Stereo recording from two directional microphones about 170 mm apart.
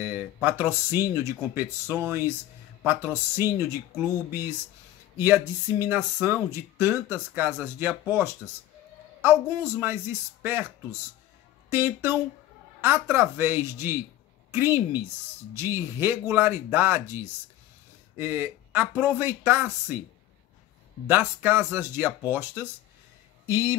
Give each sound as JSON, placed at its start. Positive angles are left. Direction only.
{"t": 0.0, "sound": "speech", "side_deg": -10}
{"t": 21.1, "sound": "speech", "side_deg": -10}